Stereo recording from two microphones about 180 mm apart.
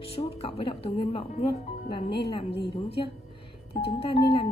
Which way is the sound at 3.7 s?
30° left (ahead or behind).